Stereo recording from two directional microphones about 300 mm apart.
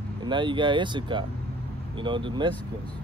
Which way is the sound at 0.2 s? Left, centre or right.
Centre.